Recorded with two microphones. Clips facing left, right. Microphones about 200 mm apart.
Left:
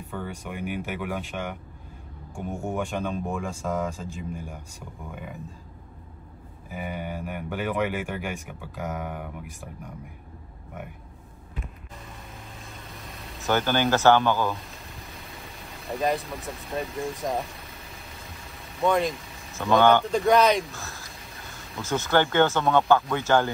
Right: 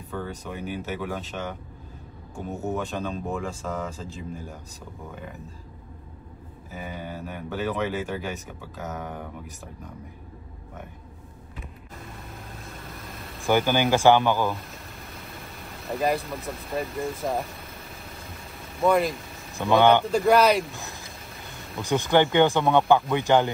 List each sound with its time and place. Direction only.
0.1 s speech: 10° left (ahead or behind)
6.7 s speech: 15° left (ahead or behind)
12.6 s vehicle: centre (ahead or behind)
13.4 s speech: 15° right (ahead or behind)
14.5 s vehicle: centre (ahead or behind)
19.7 s speech: 15° right (ahead or behind)
20.0 s speech: centre (ahead or behind)
20.7 s speech: 15° right (ahead or behind)
21.0 s a sound: centre (ahead or behind)
21.8 s speech: 15° right (ahead or behind)